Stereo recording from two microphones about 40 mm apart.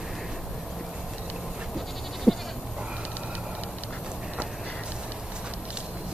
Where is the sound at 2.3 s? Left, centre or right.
Centre.